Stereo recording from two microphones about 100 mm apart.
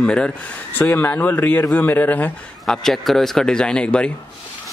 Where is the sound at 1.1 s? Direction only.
20° left (ahead or behind).